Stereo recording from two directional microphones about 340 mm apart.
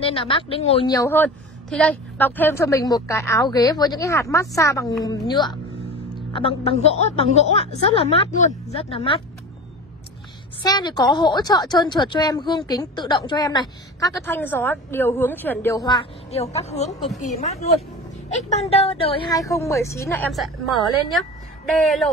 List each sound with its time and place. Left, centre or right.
0.0 s a woman's voice: centre
10.6 s a woman's voice: centre